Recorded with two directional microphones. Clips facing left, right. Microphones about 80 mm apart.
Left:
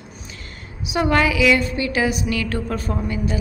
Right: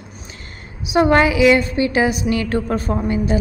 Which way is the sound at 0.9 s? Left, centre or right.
Right.